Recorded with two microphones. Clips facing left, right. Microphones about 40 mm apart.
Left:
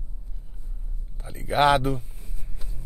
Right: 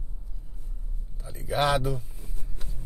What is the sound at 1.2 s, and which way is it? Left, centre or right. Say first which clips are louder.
Speech: left 5 dB; left.